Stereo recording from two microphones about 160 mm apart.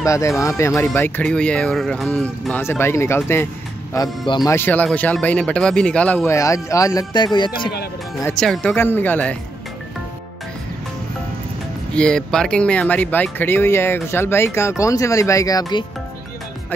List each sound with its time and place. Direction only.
0.0 s speech: 20° left (ahead or behind)
4.5 s speech: 15° left (ahead or behind); by 7.7 s 30° left (ahead or behind)
8.4 s speech: 5° left (ahead or behind)
11.9 s speech: 5° left (ahead or behind); by 15.8 s 20° left (ahead or behind)